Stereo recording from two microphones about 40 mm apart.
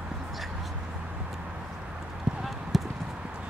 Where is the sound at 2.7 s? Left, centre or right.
Centre.